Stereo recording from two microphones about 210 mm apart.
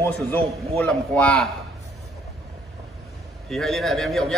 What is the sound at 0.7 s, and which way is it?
Speech, 5° left (ahead or behind).